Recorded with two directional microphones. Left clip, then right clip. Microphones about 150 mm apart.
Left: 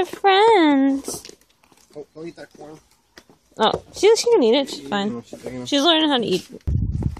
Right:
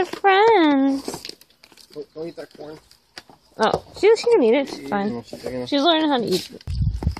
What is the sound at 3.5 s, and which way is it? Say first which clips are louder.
Speech: left 1 dB; 15° left (ahead or behind).